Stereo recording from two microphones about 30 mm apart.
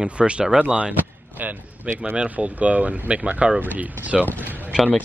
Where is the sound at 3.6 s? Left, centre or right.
Right.